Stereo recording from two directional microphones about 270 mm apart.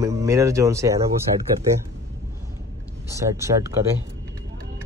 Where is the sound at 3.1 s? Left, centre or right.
Centre.